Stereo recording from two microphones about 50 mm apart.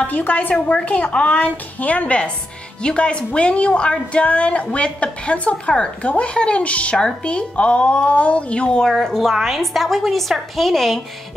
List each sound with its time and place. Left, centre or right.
0.0 s a woman's voice: left; by 8.9 s centre
8.9 s a woman's voice: centre